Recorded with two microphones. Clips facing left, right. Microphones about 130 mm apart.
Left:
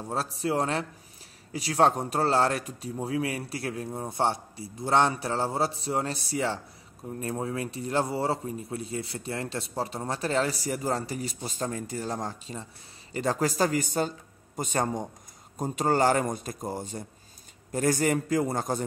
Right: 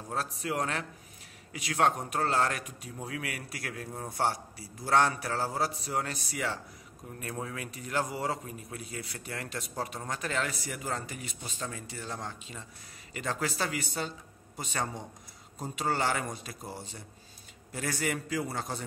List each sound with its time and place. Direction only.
0.1 s a man's voice: 30° left (ahead or behind)